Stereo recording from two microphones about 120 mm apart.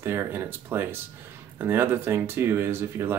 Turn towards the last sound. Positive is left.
turn(degrees=-20)  # may be behind; listen again after turning